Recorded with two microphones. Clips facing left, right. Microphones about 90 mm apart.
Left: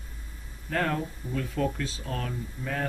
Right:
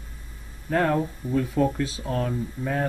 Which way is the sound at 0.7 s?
20° right (ahead or behind).